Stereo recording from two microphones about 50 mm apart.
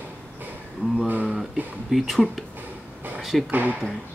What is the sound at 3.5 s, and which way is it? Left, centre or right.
Speech, right.